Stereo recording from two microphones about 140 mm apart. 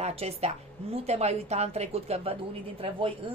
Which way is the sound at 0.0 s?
45° right (ahead or behind).